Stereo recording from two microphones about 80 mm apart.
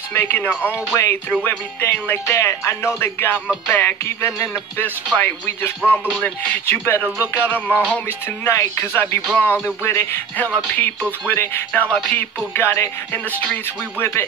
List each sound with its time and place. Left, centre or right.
0.1 s music: left
2.2 s speech: left
3.7 s music: left
8.5 s speech: left
9.3 s music: left